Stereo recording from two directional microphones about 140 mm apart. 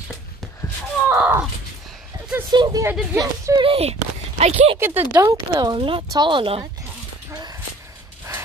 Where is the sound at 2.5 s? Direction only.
30° right (ahead or behind).